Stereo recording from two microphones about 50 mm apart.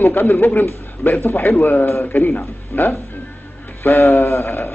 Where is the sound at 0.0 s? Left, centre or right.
Left.